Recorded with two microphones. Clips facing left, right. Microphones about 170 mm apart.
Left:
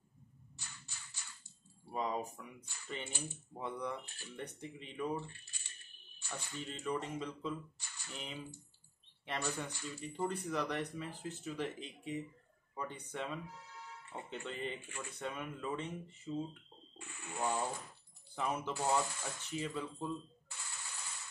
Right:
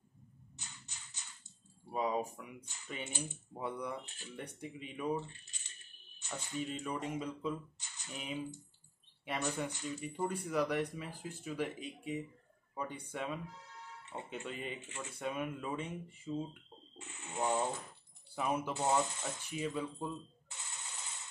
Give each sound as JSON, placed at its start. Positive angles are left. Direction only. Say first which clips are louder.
{"t": 0.6, "sound": "a sound", "louder": "even", "side_deg": -20}
{"t": 1.9, "sound": "speech", "louder": "right 3 dB", "side_deg": -10}
{"t": 4.4, "sound": "speech", "louder": "right 1 dB", "side_deg": -10}
{"t": 6.2, "sound": "a sound", "louder": "right 2 dB", "side_deg": -20}
{"t": 6.7, "sound": "speech", "louder": "left 4 dB", "side_deg": -10}
{"t": 7.8, "sound": "squish", "louder": "right 2 dB", "side_deg": -20}
{"t": 8.2, "sound": "speech", "louder": "right 6 dB", "side_deg": -15}
{"t": 14.4, "sound": "speech", "louder": "left 3 dB", "side_deg": -10}
{"t": 14.8, "sound": "speech", "louder": "right 1 dB", "side_deg": -20}
{"t": 15.1, "sound": "speech", "louder": "right 5 dB", "side_deg": -10}
{"t": 17.0, "sound": "speech", "louder": "right 2 dB", "side_deg": -20}
{"t": 18.3, "sound": "speech", "louder": "right 3 dB", "side_deg": -10}
{"t": 18.7, "sound": "speech", "louder": "even", "side_deg": -20}
{"t": 19.7, "sound": "a sound", "louder": "right 1 dB", "side_deg": -20}